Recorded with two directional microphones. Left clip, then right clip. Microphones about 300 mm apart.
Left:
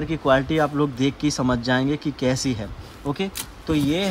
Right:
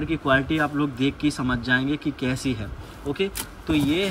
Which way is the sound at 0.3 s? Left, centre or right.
Centre.